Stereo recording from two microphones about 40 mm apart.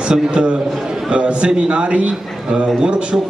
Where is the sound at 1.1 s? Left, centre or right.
Right.